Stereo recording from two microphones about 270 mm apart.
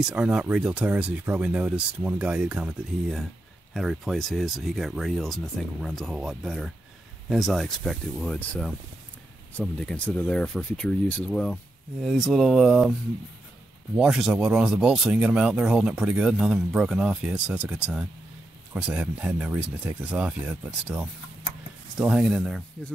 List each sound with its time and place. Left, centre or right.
0.0 s speech: centre
13.9 s speech: centre